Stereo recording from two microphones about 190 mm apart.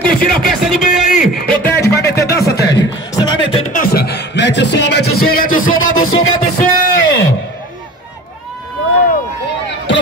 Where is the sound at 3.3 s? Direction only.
30° left (ahead or behind).